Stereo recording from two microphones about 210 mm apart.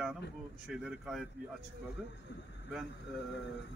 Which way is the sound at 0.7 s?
Centre (ahead or behind).